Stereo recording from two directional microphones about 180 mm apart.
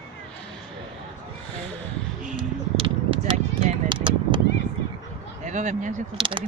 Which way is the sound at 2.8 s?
30° right (ahead or behind).